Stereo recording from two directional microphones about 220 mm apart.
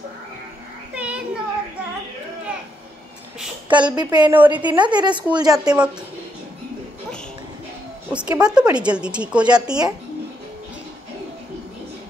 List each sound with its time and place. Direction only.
0.9 s a sound: 5° right (ahead or behind)
3.6 s a woman's voice: 20° right (ahead or behind)
4.3 s a woman's voice: 10° right (ahead or behind)
4.6 s a woman's voice: 20° right (ahead or behind)
8.1 s a woman's voice: 5° right (ahead or behind)